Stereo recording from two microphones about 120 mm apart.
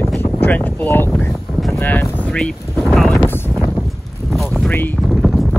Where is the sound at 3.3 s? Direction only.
15° left (ahead or behind).